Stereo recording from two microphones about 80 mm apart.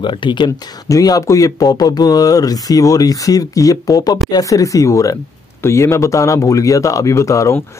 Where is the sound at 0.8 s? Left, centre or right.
Left.